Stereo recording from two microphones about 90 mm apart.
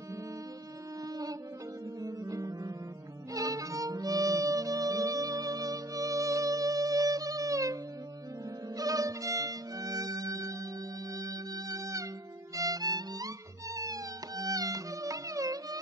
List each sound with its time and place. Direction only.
1.0 s music: 45° right (ahead or behind)
8.7 s violin: 40° right (ahead or behind)
11.1 s music: 40° right (ahead or behind)